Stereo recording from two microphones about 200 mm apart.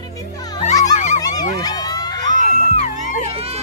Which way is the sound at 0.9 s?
35° left (ahead or behind).